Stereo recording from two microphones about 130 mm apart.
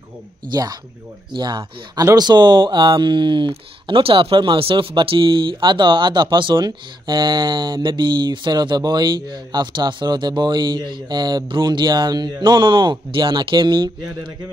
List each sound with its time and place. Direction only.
0.5 s speech: 30° right (ahead or behind)